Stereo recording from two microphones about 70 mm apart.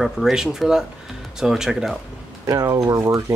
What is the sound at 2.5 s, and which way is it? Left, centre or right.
Speech, right.